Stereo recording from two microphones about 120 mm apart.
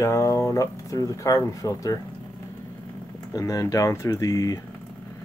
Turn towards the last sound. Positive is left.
turn(degrees=30)  # may be behind; listen again after turning